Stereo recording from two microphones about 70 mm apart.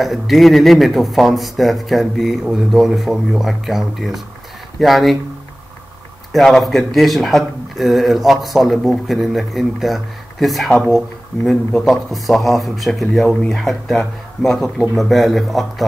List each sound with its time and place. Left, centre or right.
0.0 s speech: centre
6.3 s speech: centre